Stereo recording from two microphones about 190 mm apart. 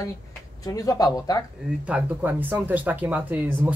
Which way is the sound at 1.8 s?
10° right (ahead or behind).